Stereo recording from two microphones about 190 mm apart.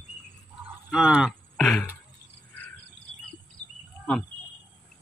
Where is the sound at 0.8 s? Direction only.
5° right (ahead or behind).